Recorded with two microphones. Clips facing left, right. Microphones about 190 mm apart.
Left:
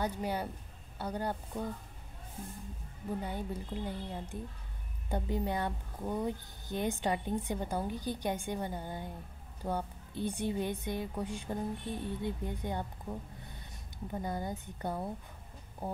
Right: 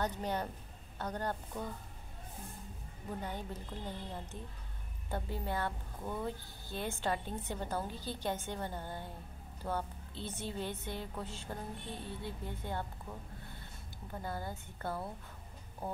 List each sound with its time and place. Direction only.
0.0 s a woman's voice: 10° left (ahead or behind)
3.2 s a woman's voice: 10° left (ahead or behind)
14.1 s a woman's voice: 20° left (ahead or behind)